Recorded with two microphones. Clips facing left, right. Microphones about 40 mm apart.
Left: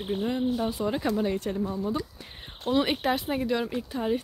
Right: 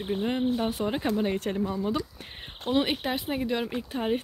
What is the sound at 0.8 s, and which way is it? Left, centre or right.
Speech, right.